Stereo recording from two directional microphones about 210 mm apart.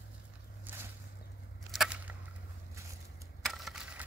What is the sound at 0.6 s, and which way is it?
Boat, 10° right (ahead or behind).